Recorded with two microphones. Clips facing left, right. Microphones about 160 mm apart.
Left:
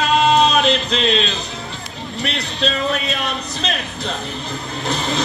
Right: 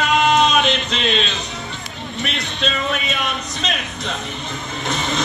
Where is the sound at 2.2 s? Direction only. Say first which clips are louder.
Left 2 dB; centre (ahead or behind).